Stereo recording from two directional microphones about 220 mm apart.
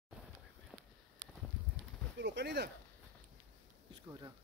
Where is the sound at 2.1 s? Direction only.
55° right (ahead or behind).